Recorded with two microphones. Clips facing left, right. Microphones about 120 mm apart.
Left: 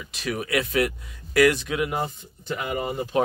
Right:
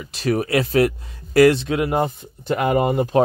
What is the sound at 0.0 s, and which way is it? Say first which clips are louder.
Speech: right 8 dB; 40° right (ahead or behind).